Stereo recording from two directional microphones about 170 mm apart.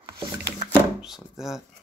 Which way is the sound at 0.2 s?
25° right (ahead or behind).